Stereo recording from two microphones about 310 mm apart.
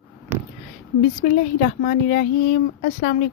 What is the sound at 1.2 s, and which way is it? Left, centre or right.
Speech, left.